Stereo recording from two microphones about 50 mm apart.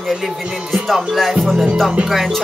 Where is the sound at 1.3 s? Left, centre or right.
Centre.